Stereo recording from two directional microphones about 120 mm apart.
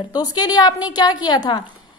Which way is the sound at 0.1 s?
35° left (ahead or behind).